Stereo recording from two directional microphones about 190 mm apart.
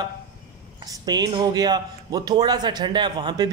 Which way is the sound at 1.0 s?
20° right (ahead or behind).